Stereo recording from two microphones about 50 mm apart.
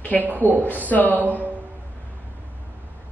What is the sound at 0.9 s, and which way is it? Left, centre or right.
Speech, left.